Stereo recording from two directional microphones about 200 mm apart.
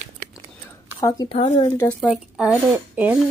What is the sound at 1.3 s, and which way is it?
Speech, 30° left (ahead or behind).